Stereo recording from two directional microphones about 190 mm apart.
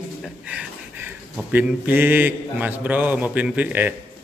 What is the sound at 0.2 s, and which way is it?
A man's voice, 5° right (ahead or behind).